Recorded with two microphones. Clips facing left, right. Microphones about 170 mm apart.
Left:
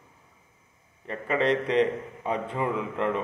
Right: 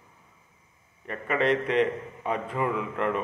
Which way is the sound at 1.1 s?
30° left (ahead or behind).